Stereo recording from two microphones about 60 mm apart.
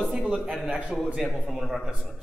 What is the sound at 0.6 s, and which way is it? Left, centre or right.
Speech, right.